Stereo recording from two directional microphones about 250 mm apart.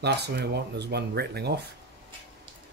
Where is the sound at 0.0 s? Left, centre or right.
Right.